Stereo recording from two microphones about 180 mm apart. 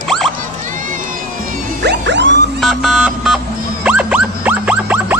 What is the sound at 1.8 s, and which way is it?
Music, 75° right (ahead or behind).